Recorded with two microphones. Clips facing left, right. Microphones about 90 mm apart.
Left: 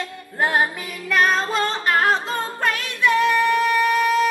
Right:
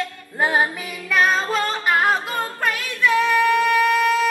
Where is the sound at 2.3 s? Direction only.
30° left (ahead or behind).